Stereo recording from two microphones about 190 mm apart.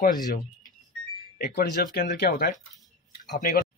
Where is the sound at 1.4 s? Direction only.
55° left (ahead or behind).